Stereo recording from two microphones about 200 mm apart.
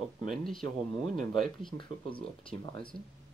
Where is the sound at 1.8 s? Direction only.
25° left (ahead or behind).